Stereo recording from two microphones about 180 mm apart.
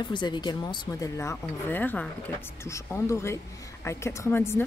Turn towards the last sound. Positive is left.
turn(degrees=15)  # may be behind; listen again after turning